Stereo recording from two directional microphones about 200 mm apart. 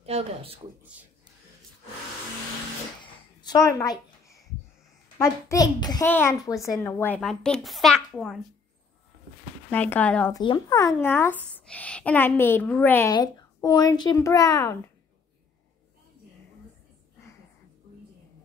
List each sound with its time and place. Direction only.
0.0 s speech: 30° right (ahead or behind)
3.0 s a sound: 20° left (ahead or behind)
5.2 s speech: 15° left (ahead or behind)
9.7 s speech: 10° left (ahead or behind)
10.3 s speech: 20° left (ahead or behind)